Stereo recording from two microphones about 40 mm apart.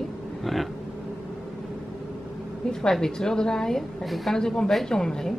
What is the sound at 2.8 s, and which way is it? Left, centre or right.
Speech, centre.